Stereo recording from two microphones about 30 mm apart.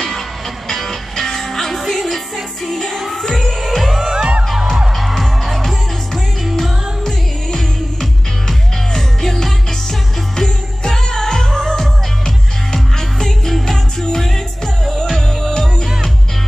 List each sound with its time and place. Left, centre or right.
0.7 s music: centre
4.1 s music: right
4.9 s music: centre